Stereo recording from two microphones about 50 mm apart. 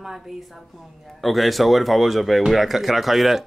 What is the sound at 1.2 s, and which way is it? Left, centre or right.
A man's voice, centre.